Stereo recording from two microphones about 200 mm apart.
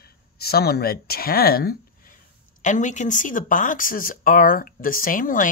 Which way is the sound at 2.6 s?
40° left (ahead or behind).